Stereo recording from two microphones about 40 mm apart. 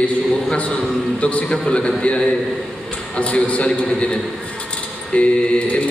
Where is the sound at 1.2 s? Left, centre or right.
Left.